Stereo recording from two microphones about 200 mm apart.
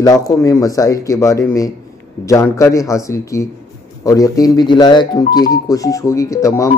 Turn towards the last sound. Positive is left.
turn(degrees=15)  # may be behind; listen again after turning